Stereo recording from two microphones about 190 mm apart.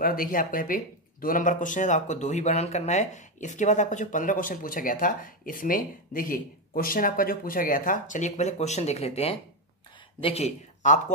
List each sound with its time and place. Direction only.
0.0 s speech: 50° left (ahead or behind)